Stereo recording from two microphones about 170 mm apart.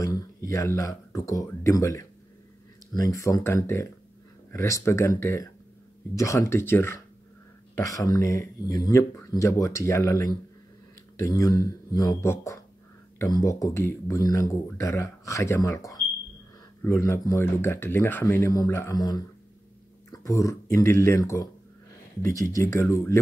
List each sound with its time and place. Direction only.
0.0 s speech: 20° left (ahead or behind)